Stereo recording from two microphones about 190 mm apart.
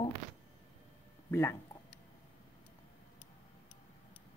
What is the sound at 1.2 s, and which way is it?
Speech, 15° left (ahead or behind).